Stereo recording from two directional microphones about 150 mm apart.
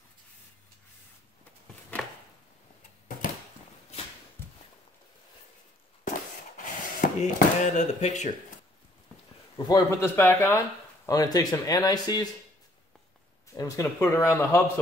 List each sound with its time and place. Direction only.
4.4 s walk: 15° left (ahead or behind)
6.0 s a sound: 60° left (ahead or behind)
9.7 s speech: 20° left (ahead or behind)
13.6 s speech: 20° left (ahead or behind)